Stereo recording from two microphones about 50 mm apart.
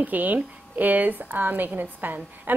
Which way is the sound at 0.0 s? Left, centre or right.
Right.